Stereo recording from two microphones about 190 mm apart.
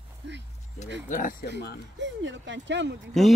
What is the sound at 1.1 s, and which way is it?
Speech, 45° left (ahead or behind).